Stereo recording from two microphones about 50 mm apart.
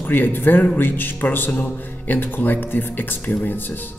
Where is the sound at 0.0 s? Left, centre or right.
Left.